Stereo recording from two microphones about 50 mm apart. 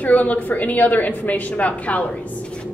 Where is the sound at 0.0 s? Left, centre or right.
Left.